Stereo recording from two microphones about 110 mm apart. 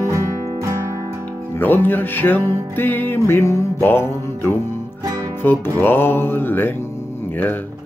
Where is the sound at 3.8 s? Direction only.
20° left (ahead or behind).